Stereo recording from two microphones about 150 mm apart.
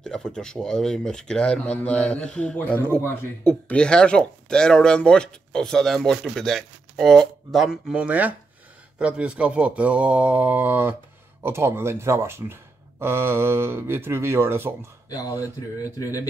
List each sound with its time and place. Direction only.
0.0 s speech: 5° left (ahead or behind); by 14.7 s 15° right (ahead or behind)
15.0 s speech: 25° left (ahead or behind)